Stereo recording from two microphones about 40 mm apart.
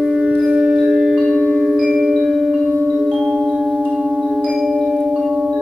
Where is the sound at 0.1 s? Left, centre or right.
Right.